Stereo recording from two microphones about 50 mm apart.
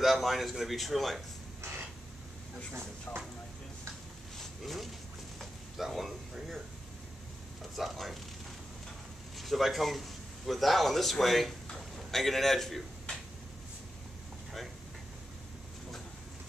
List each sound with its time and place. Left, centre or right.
0.0 s speech: centre
1.6 s a sound: right
3.1 s speech: left
4.4 s a sound: centre
7.7 s speech: centre
9.4 s a man's voice: centre